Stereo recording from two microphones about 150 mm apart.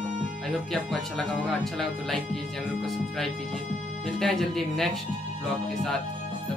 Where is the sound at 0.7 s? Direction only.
Centre (ahead or behind).